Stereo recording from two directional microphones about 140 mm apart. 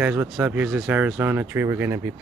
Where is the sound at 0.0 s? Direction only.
10° right (ahead or behind).